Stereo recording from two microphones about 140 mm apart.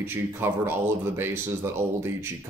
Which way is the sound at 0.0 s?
15° right (ahead or behind).